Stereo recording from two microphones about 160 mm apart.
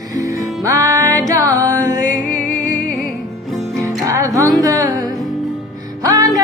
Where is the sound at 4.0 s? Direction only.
20° right (ahead or behind).